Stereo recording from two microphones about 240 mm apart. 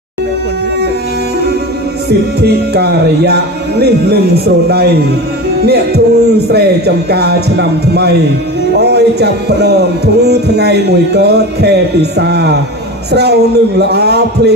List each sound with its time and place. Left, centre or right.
2.0 s music: right
8.7 s speech: right
10.2 s music: right